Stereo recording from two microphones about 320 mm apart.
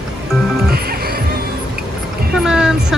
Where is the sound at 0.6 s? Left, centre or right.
Right.